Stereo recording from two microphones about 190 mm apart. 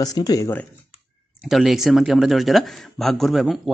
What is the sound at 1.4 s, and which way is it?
Speech, centre (ahead or behind).